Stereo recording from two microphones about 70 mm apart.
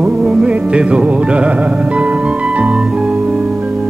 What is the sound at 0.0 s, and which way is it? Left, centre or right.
Music, centre.